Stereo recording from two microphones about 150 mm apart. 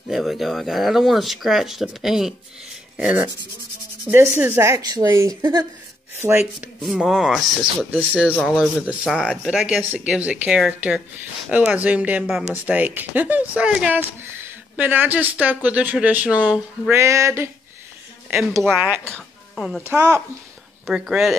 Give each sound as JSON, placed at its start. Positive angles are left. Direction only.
{"t": 0.1, "sound": "a woman's voice", "side_deg": 0}
{"t": 6.2, "sound": "speech", "side_deg": -15}
{"t": 6.8, "sound": "speech", "side_deg": -5}
{"t": 9.5, "sound": "speech", "side_deg": -5}
{"t": 16.9, "sound": "a woman's voice", "side_deg": -20}
{"t": 18.7, "sound": "speech", "side_deg": -10}
{"t": 19.0, "sound": "music", "side_deg": 5}
{"t": 19.8, "sound": "speech", "side_deg": -15}
{"t": 20.8, "sound": "speech", "side_deg": 0}